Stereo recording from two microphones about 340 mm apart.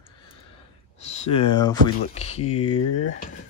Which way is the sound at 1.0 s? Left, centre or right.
Centre.